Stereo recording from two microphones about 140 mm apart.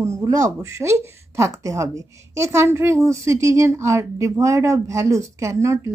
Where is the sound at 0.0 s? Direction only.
20° right (ahead or behind).